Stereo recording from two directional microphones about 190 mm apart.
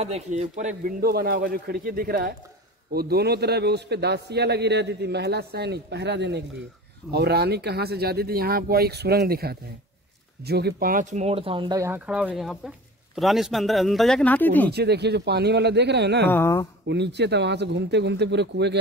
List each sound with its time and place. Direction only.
0.0 s speech: 35° right (ahead or behind)
1.0 s a man's voice: 55° right (ahead or behind); by 11.9 s 25° right (ahead or behind)
11.9 s speech: 5° right (ahead or behind); by 14.7 s 10° left (ahead or behind)
14.7 s a man's voice: 60° right (ahead or behind)
16.3 s a woman's voice: 10° left (ahead or behind)
16.8 s a man's voice: 65° right (ahead or behind)